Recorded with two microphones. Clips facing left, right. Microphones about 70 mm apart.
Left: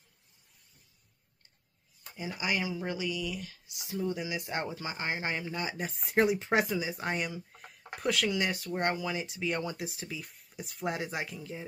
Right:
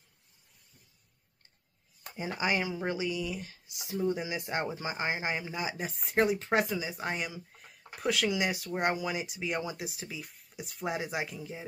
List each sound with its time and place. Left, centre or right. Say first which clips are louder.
2.2 s speech: right 2 dB; right; by 11.6 s centre